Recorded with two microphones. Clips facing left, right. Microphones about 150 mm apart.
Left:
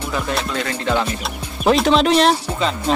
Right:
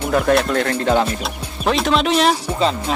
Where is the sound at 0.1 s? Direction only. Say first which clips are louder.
Right 8 dB; 55° right (ahead or behind).